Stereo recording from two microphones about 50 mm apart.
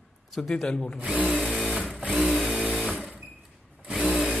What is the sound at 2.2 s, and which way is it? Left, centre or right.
Drill, centre.